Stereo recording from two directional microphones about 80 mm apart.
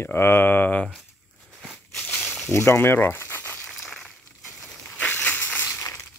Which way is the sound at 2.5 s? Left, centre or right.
Left.